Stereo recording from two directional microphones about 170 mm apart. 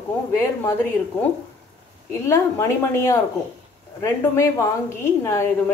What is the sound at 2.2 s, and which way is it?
A woman's voice, 15° left (ahead or behind).